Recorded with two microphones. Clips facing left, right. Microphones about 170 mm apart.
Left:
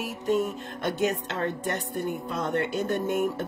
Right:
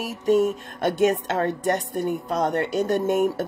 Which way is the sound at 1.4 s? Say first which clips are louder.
Right 4 dB; 45° right (ahead or behind).